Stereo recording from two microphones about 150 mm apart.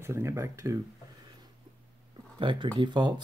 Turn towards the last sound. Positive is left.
turn(degrees=-30)  # may be behind; listen again after turning